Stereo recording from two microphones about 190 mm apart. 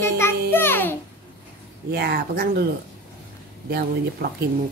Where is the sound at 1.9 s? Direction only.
55° right (ahead or behind).